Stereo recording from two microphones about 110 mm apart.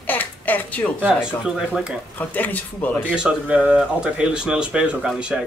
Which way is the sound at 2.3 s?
15° left (ahead or behind).